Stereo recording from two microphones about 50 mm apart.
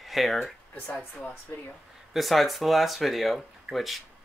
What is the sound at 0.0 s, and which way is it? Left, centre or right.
Speech, centre.